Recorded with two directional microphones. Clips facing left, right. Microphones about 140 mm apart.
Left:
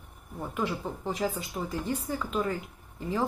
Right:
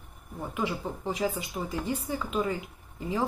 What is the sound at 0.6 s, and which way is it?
Speech, 10° right (ahead or behind).